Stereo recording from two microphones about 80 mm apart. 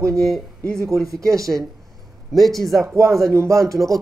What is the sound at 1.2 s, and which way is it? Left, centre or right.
Speech, right.